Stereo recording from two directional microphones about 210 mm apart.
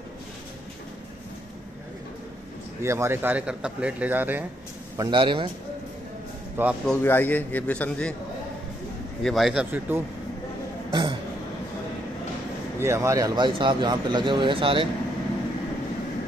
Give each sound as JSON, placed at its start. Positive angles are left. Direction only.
{"t": 2.8, "sound": "speech", "side_deg": -10}
{"t": 4.9, "sound": "speech", "side_deg": -20}
{"t": 6.5, "sound": "a man's voice", "side_deg": -5}
{"t": 6.9, "sound": "a man's voice", "side_deg": 10}
{"t": 9.2, "sound": "speech", "side_deg": 0}
{"t": 10.9, "sound": "speech", "side_deg": -20}
{"t": 12.7, "sound": "speech", "side_deg": -10}